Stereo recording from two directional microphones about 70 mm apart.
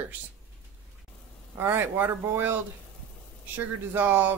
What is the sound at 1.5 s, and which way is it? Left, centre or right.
Speech, right.